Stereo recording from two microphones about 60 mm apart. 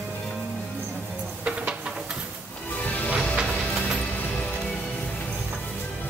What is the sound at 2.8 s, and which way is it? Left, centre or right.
Music, left.